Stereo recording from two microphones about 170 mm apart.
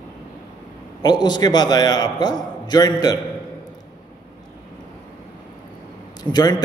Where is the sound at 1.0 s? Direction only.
25° left (ahead or behind).